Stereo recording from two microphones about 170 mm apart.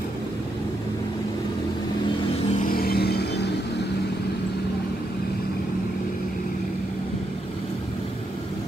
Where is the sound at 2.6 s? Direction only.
60° left (ahead or behind).